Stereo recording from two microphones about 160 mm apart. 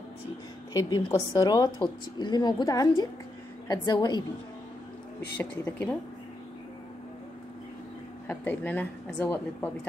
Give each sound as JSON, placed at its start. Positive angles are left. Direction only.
{"t": 0.7, "sound": "a woman's voice", "side_deg": 25}
{"t": 5.4, "sound": "a woman's voice", "side_deg": 10}
{"t": 8.3, "sound": "a woman's voice", "side_deg": 10}